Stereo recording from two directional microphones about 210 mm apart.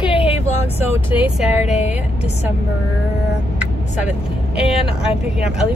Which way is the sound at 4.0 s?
5° right (ahead or behind).